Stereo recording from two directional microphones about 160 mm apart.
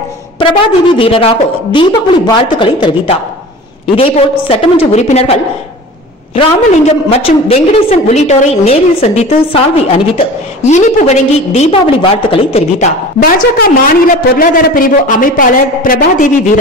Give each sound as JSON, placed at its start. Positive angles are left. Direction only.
{"t": 0.4, "sound": "a woman's voice", "side_deg": 35}
{"t": 7.1, "sound": "a woman's voice", "side_deg": 40}
{"t": 13.2, "sound": "a man's voice", "side_deg": 65}